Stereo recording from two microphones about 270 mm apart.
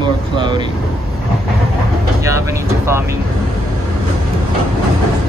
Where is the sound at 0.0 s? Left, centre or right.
Centre.